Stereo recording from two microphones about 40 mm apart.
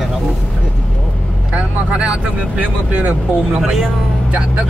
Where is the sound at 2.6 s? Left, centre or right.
Right.